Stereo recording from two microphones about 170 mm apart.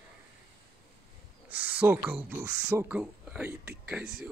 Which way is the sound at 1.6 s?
10° right (ahead or behind).